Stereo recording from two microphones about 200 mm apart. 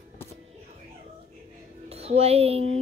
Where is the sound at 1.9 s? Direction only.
30° right (ahead or behind).